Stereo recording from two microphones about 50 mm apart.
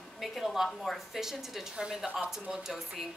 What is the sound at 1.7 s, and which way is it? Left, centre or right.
A woman's voice, centre.